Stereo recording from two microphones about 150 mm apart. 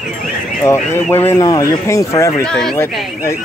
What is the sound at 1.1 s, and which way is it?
Speech, 15° left (ahead or behind).